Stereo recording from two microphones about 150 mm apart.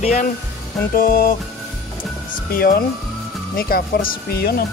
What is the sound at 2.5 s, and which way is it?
Speech, 80° left.